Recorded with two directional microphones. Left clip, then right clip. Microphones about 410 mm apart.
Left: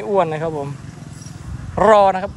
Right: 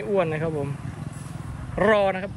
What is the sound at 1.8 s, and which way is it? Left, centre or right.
Speech, centre.